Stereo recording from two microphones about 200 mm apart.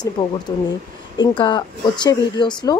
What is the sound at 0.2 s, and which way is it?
Speech, 20° left (ahead or behind).